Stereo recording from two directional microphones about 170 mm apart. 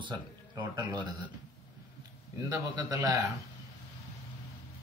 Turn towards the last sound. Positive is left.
turn(degrees=-20)  # may be behind; listen again after turning